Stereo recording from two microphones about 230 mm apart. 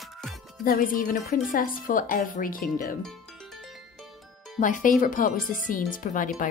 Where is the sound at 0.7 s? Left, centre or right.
Left.